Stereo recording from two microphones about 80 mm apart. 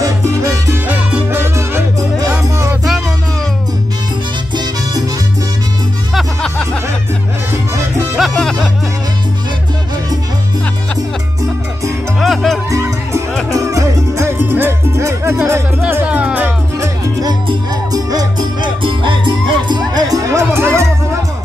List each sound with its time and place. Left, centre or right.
0.0 s salsa music: right
1.3 s music: right
6.1 s music: centre
7.7 s music: right
8.2 s music: centre
12.2 s music: centre
12.7 s music: right
14.2 s music: right
15.9 s music: right
17.2 s music: right
18.8 s music: right